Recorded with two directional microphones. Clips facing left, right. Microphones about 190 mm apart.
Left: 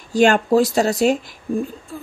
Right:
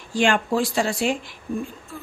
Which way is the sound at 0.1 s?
40° left (ahead or behind).